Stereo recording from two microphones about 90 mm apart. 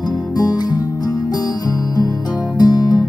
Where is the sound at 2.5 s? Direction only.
50° left (ahead or behind).